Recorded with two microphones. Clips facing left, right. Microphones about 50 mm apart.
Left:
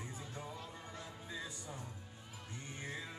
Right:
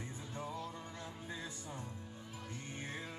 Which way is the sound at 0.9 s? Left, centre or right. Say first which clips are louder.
Right 1 dB; right.